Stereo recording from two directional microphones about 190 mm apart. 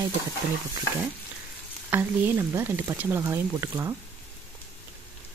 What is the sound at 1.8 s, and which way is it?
Speech, 10° right (ahead or behind).